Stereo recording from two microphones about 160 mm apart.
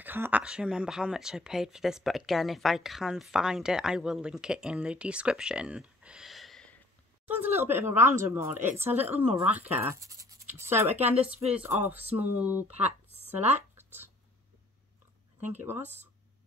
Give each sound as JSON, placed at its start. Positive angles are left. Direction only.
{"t": 0.0, "sound": "speech", "side_deg": -10}
{"t": 7.2, "sound": "speech", "side_deg": -10}
{"t": 15.4, "sound": "speech", "side_deg": -15}